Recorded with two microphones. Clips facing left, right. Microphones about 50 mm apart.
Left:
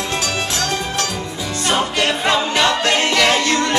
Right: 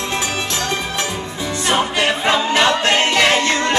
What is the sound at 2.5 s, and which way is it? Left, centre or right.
Music, right.